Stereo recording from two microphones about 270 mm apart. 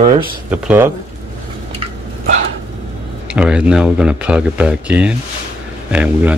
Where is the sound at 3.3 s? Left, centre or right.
Centre.